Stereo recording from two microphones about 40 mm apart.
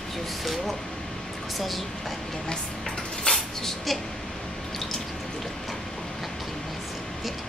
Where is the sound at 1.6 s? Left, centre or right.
Centre.